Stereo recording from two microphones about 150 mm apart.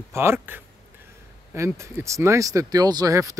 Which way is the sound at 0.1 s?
15° right (ahead or behind).